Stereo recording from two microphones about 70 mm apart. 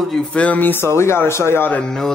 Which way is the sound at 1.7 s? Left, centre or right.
Centre.